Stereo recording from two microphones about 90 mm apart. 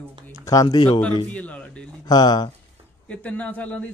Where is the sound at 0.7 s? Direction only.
60° left (ahead or behind).